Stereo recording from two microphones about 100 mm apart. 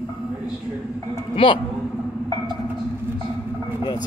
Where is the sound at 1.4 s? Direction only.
60° left (ahead or behind).